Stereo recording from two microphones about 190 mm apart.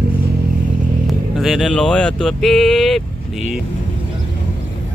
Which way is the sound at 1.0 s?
Centre (ahead or behind).